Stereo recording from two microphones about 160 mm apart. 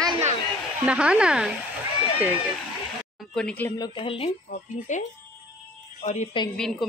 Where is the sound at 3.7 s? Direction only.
30° left (ahead or behind).